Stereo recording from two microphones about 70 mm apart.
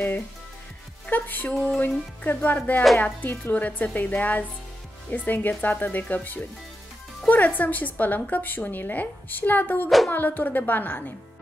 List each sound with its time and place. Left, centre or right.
1.0 s a woman's voice: left
9.8 s speech: centre
10.1 s a woman's voice: left